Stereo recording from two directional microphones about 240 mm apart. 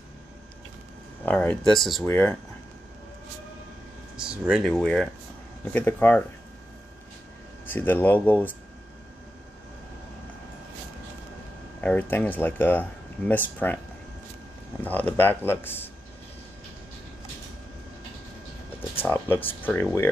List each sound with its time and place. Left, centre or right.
1.2 s a man's voice: centre
4.2 s a man's voice: centre
7.6 s a man's voice: centre
11.8 s a man's voice: centre
14.8 s a man's voice: centre
18.9 s speech: centre